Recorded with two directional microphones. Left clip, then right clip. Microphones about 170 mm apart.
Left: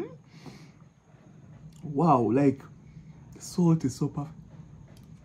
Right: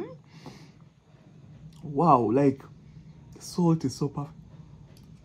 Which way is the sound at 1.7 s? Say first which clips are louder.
Right 3 dB; 15° right (ahead or behind).